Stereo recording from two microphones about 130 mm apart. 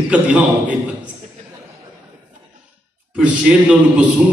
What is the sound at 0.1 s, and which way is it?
Speech, 10° right (ahead or behind).